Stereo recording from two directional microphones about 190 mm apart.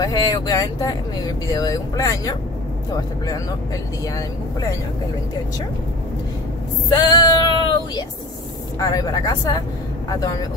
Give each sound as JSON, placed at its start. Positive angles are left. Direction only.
{"t": 0.0, "sound": "speech", "side_deg": 20}
{"t": 6.9, "sound": "female singing", "side_deg": 20}
{"t": 8.7, "sound": "speech", "side_deg": 20}